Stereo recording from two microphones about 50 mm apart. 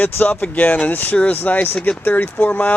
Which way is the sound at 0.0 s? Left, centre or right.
Left.